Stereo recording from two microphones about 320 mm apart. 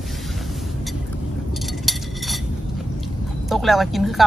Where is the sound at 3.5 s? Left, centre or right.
Centre.